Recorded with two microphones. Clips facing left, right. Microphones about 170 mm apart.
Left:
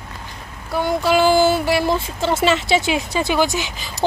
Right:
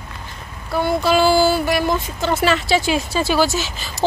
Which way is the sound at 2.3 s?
20° left (ahead or behind).